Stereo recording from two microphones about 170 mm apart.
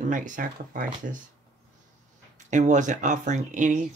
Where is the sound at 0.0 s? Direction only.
50° right (ahead or behind).